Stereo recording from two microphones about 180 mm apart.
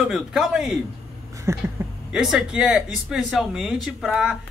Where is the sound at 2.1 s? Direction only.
5° right (ahead or behind).